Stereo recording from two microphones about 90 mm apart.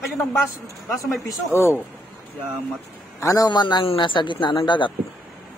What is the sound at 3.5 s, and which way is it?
Speech, 60° left (ahead or behind).